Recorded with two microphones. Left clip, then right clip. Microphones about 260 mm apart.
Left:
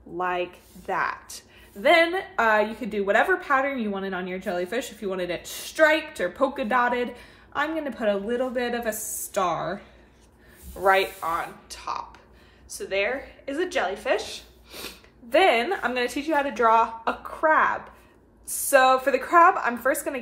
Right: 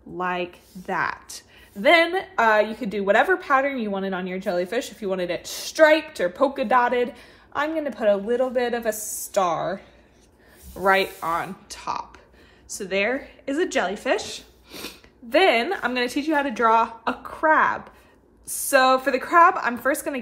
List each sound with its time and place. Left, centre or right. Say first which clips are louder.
0.2 s a woman's voice: even; right; by 9.8 s centre
10.8 s a woman's voice: right 1 dB; right